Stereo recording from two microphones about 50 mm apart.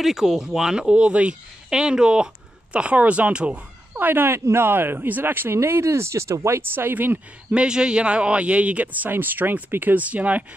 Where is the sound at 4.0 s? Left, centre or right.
Right.